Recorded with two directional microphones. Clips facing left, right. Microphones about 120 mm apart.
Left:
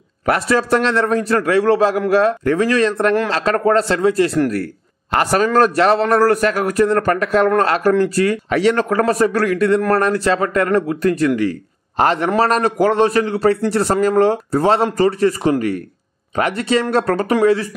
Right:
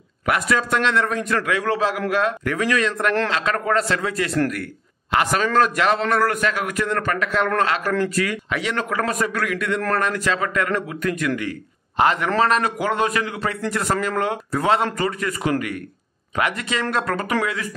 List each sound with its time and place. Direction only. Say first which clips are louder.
0.2 s a man's voice: left 5 dB; 35° left (ahead or behind)